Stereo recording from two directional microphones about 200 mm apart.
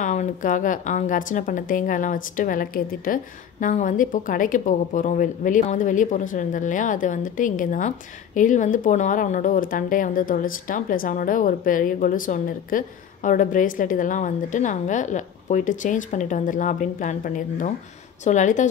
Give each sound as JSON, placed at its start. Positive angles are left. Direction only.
{"t": 0.0, "sound": "speech", "side_deg": 35}